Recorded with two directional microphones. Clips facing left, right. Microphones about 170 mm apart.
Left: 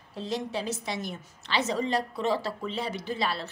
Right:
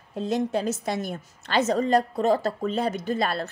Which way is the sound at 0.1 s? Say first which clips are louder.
Right 7 dB; 50° right (ahead or behind).